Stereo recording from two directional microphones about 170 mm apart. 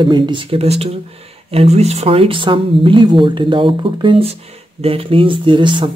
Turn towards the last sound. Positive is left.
turn(degrees=-30)  # may be behind; listen again after turning